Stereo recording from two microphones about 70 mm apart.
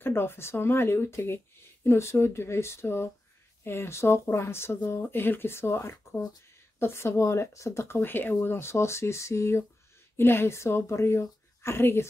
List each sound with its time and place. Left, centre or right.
0.0 s speech: left